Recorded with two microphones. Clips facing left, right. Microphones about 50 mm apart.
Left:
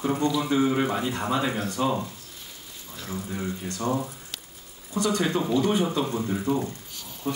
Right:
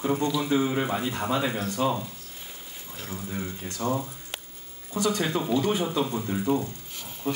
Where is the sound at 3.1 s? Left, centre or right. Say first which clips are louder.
Left 3 dB; centre.